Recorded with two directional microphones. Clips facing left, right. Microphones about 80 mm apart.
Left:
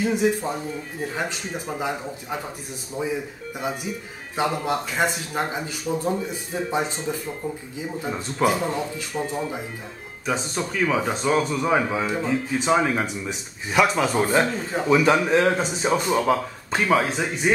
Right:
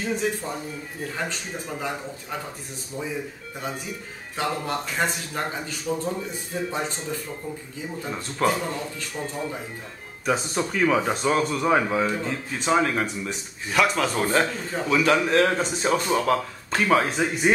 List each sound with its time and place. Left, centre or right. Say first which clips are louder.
0.0 s speech: left 5 dB; centre
4.4 s speech: left 3 dB; centre
10.2 s speech: right 1 dB; centre